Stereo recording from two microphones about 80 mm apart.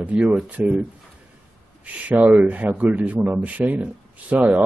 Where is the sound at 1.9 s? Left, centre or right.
Centre.